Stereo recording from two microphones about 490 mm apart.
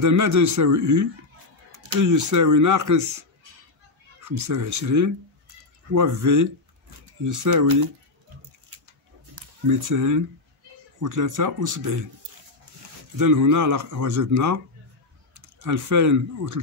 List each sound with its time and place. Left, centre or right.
0.0 s speech: right
9.3 s speech: right
13.2 s speech: right